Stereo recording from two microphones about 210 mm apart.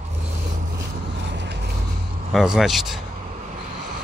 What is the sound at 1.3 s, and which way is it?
Vehicle, 55° right (ahead or behind).